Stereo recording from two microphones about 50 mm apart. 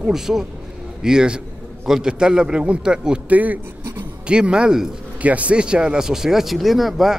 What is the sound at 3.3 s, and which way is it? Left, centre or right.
Speech, right.